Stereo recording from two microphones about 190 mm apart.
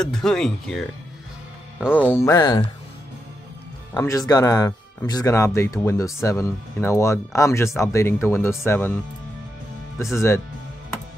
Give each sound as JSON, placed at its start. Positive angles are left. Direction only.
{"t": 0.0, "sound": "speech", "side_deg": 5}
{"t": 2.0, "sound": "speech", "side_deg": 10}
{"t": 3.9, "sound": "speech", "side_deg": 15}
{"t": 10.1, "sound": "speech", "side_deg": 15}